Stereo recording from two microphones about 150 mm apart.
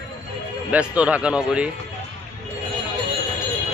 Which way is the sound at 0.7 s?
10° right (ahead or behind).